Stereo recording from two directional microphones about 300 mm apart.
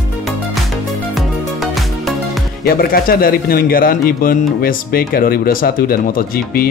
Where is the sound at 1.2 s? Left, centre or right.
Centre.